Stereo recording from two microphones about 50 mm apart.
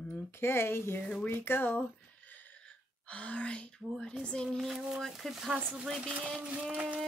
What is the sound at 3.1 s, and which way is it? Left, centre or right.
Speech, left.